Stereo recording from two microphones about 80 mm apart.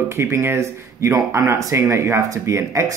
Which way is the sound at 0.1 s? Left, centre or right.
Right.